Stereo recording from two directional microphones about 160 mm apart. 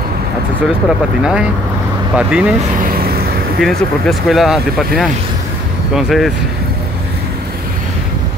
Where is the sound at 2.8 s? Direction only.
70° right (ahead or behind).